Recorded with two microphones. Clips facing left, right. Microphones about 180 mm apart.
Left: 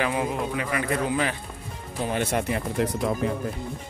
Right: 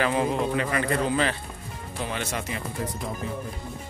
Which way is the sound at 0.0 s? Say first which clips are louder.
Right 2 dB; 10° left (ahead or behind).